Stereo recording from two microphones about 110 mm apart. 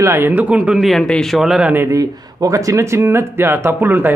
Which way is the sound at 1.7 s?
25° right (ahead or behind).